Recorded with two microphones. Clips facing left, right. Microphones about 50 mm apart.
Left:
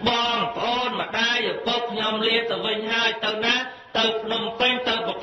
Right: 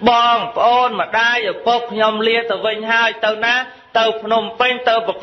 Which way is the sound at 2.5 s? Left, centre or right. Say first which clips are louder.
Right 7 dB; right.